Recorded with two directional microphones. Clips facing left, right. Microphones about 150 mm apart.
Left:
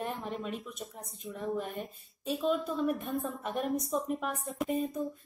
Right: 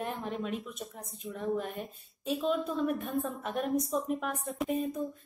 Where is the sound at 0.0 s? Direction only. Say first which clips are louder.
Right 1 dB; centre (ahead or behind).